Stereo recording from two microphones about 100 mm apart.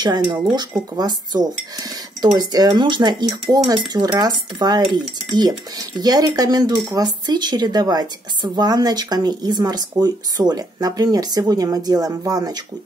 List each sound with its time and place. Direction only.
0.0 s a woman's voice: 45° right (ahead or behind)